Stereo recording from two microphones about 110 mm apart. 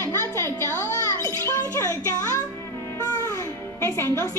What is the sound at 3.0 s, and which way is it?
Music, 30° left (ahead or behind).